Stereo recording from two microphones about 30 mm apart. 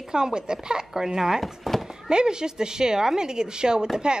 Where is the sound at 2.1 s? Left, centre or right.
Right.